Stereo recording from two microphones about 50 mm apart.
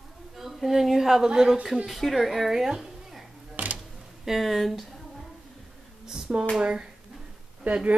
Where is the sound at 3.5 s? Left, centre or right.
Right.